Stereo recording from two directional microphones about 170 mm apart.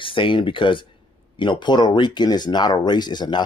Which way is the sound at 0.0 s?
30° left (ahead or behind).